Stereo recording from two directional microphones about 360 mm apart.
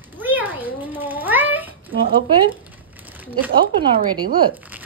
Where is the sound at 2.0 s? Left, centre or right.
Right.